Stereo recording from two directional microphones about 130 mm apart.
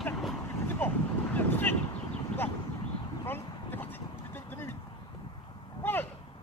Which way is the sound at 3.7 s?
15° left (ahead or behind).